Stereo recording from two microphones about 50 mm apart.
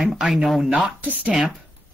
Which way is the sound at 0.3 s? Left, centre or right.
Centre.